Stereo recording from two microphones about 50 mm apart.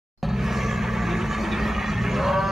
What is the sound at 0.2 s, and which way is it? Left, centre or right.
Vehicle, centre.